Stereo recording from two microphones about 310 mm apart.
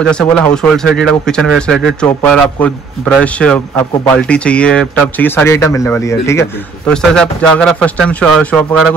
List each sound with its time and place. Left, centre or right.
0.1 s a man's voice: centre